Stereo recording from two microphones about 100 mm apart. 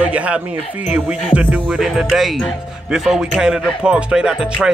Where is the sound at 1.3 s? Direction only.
20° left (ahead or behind).